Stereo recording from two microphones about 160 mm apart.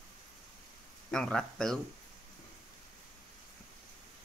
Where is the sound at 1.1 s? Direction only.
5° left (ahead or behind).